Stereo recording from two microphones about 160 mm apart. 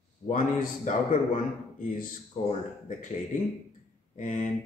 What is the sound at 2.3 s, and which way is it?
Speech, 45° left (ahead or behind).